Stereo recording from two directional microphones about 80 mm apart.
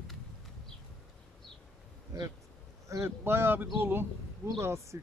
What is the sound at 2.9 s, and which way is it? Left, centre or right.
A man's voice, right.